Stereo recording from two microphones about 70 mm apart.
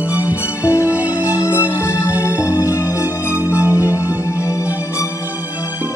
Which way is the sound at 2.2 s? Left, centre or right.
Left.